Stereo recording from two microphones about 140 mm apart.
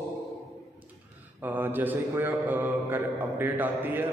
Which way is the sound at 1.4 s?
15° right (ahead or behind).